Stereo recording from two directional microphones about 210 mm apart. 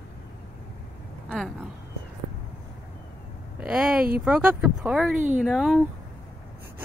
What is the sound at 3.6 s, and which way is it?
Speech, 5° right (ahead or behind).